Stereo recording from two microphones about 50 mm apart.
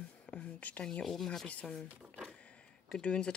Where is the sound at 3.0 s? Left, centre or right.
Centre.